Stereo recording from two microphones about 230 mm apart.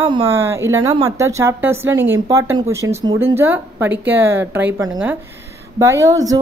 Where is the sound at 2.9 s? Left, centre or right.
Right.